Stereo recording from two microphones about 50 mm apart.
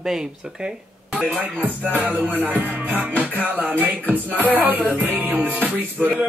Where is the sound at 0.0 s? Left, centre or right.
Centre.